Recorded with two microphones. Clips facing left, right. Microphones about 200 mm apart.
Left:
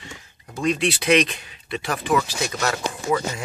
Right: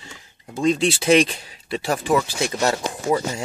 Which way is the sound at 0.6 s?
25° right (ahead or behind).